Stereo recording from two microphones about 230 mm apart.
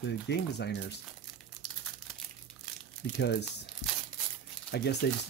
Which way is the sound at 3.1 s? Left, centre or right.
Left.